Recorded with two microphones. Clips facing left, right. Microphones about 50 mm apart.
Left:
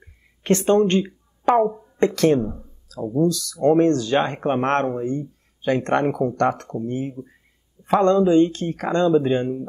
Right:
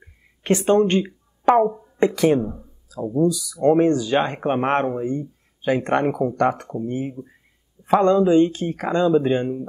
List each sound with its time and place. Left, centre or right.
0.4 s speech: centre